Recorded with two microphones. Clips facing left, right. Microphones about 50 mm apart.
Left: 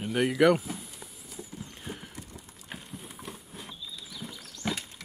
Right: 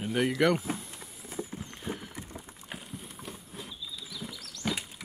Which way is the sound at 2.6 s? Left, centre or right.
Centre.